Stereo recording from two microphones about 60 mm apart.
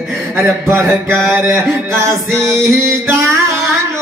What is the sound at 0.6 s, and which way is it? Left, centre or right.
Music, right.